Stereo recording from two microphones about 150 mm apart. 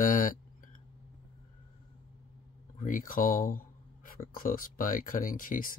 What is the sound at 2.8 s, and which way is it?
Speech, 60° left (ahead or behind).